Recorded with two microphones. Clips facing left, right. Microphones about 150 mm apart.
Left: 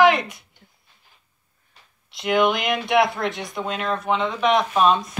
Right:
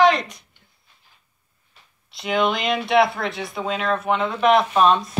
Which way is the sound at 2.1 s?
Centre (ahead or behind).